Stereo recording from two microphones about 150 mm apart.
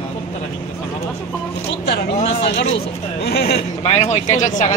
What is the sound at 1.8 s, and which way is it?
Speech, 90° left.